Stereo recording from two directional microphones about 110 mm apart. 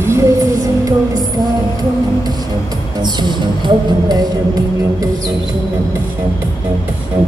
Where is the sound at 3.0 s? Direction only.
40° right (ahead or behind).